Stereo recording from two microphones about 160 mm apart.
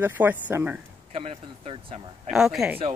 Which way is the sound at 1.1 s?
35° right (ahead or behind).